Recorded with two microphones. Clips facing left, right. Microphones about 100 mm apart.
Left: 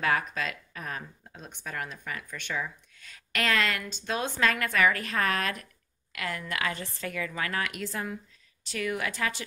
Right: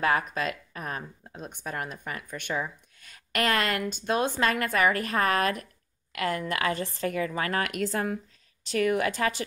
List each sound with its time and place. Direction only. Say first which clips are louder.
0.0 s speech: right 2 dB; 40° right (ahead or behind)
7.6 s speech: right 5 dB; 50° right (ahead or behind)